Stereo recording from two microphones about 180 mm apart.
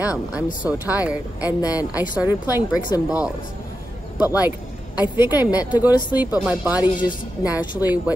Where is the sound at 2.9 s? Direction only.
20° left (ahead or behind).